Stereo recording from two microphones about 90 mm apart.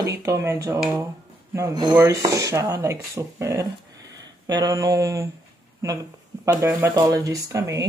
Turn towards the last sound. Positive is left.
turn(degrees=-35)  # may be behind; listen again after turning